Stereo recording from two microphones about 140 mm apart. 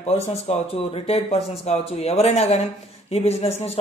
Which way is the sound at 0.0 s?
45° left (ahead or behind).